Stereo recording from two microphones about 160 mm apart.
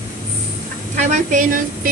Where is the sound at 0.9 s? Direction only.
50° right (ahead or behind).